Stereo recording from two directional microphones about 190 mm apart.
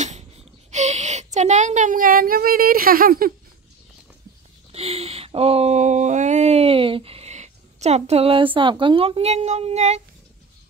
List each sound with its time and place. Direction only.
0.7 s speech: 35° right (ahead or behind)
4.7 s a sound: 30° right (ahead or behind)
8.5 s a woman's voice: 25° right (ahead or behind)